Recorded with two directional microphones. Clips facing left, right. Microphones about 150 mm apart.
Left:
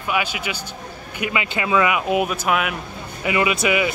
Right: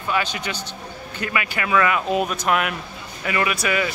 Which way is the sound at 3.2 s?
15° left (ahead or behind).